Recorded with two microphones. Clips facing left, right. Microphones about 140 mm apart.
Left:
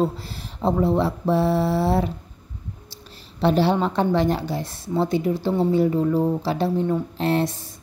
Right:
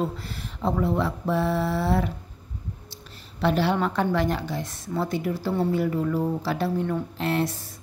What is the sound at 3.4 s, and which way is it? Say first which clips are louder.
Speech: left 4 dB; 30° left (ahead or behind).